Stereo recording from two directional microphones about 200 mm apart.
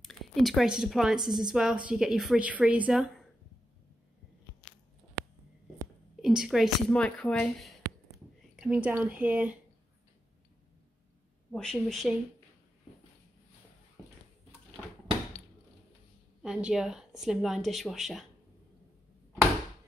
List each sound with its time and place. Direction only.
0.0 s speech: centre (ahead or behind)
6.2 s speech: centre (ahead or behind)
11.5 s speech: centre (ahead or behind)
14.0 s a sound: 15° left (ahead or behind)
16.4 s speech: 5° right (ahead or behind)